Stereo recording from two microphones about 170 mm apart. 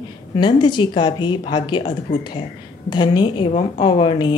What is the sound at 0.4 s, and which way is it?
A woman's voice, 25° left (ahead or behind).